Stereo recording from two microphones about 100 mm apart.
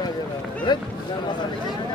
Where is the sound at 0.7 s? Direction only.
50° left (ahead or behind).